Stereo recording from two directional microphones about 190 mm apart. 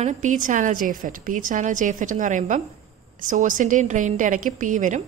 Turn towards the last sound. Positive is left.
turn(degrees=-40)  # may be behind; listen again after turning